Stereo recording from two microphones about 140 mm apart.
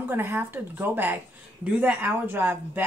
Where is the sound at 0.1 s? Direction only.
15° right (ahead or behind).